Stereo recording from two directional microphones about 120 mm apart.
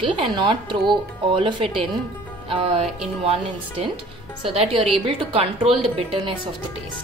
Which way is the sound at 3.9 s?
50° right (ahead or behind).